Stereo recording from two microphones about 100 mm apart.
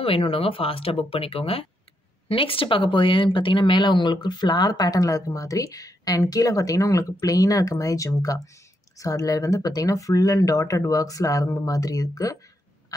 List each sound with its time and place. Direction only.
0.0 s speech: 70° left (ahead or behind); by 12.4 s 35° left (ahead or behind)